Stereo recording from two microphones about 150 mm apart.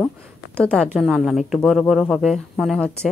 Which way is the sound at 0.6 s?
Centre (ahead or behind).